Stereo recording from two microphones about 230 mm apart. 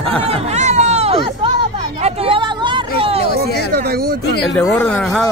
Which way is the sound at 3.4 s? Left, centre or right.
Right.